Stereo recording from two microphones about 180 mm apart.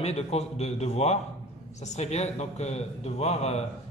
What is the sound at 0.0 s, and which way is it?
A man's voice, 35° left (ahead or behind).